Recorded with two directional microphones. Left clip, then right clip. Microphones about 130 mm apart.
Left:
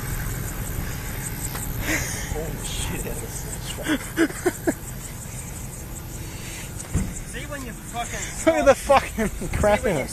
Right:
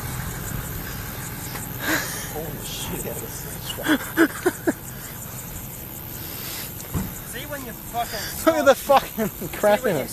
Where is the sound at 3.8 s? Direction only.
35° right (ahead or behind).